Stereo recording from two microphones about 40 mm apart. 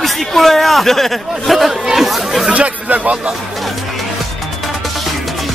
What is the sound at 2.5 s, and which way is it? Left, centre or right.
Speech, right.